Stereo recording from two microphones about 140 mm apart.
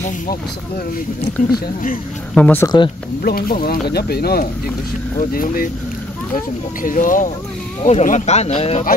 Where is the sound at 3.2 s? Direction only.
90° left.